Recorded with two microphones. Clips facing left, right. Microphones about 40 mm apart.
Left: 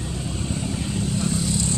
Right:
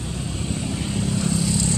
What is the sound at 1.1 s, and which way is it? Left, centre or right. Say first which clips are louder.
Vehicle: right 2 dB; right.